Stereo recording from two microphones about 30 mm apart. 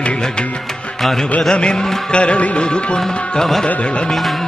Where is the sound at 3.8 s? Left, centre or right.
Left.